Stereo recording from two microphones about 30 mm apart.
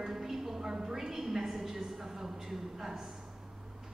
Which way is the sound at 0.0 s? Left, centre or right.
Centre.